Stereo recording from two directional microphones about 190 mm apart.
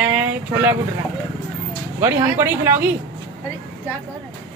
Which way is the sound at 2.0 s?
15° right (ahead or behind).